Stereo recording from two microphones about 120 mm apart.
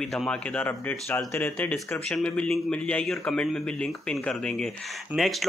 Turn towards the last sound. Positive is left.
turn(degrees=0)  # may be behind; listen again after turning